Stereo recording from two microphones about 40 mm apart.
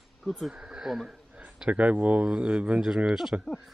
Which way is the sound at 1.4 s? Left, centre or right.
Centre.